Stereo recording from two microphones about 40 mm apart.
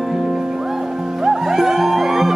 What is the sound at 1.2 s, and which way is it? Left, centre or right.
Music, centre.